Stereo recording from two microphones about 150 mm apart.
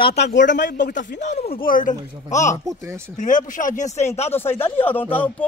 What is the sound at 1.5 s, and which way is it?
Speech, 70° left (ahead or behind).